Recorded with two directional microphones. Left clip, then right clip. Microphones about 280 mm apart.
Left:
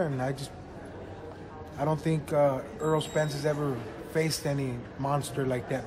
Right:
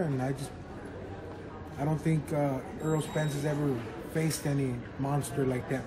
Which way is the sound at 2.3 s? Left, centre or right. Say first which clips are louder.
Left 10 dB; left.